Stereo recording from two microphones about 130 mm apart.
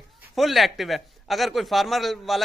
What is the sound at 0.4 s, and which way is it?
A man's voice, centre (ahead or behind).